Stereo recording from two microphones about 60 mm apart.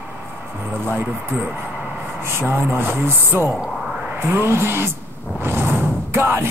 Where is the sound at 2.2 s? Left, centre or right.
Right.